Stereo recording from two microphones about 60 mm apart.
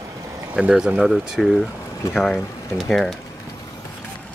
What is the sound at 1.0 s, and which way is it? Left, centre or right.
Speech, centre.